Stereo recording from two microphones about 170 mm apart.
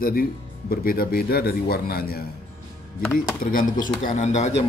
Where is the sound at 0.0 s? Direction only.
60° left (ahead or behind).